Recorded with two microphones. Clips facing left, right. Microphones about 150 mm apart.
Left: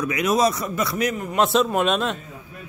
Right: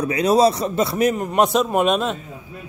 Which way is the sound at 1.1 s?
40° right (ahead or behind).